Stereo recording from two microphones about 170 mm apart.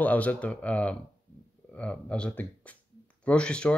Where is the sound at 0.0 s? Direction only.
10° left (ahead or behind).